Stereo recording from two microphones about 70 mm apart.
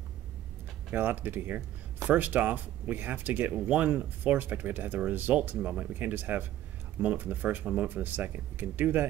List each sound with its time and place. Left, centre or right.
0.9 s speech: right